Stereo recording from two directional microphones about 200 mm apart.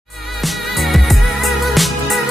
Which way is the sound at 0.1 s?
Centre (ahead or behind).